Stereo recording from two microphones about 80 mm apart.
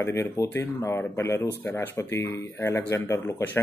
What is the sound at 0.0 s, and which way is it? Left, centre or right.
Speech, left.